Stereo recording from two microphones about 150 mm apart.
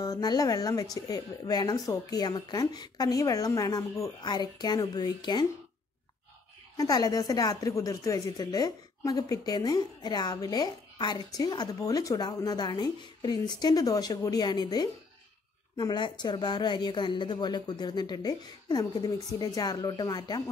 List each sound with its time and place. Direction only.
0.0 s a woman's voice: 25° left (ahead or behind)
6.8 s a woman's voice: 25° left (ahead or behind)